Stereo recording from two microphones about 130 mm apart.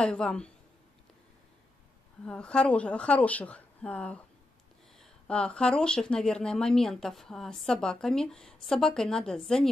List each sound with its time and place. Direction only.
0.0 s speech: 5° left (ahead or behind)
2.2 s speech: 10° left (ahead or behind)